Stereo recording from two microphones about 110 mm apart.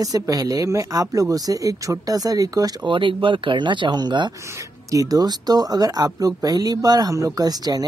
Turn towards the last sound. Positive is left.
turn(degrees=-35)  # may be behind; listen again after turning